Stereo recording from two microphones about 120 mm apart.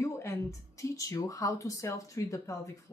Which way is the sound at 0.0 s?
25° left (ahead or behind).